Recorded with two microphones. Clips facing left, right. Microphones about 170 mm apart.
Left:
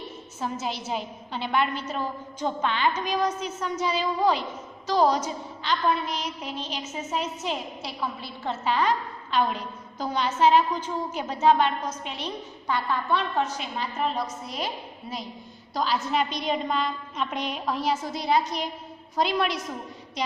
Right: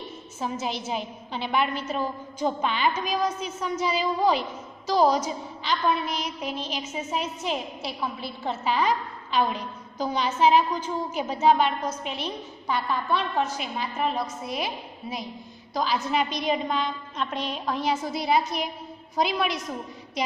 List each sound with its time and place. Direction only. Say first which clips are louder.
0.4 s a woman's voice: right 1 dB; centre (ahead or behind)